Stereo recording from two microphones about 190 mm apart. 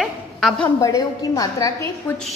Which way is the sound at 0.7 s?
15° left (ahead or behind).